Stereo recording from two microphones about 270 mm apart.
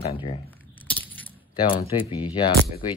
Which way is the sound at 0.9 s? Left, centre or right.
Centre.